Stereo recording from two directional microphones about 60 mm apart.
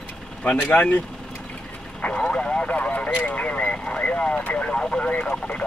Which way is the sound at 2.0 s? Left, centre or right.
Centre.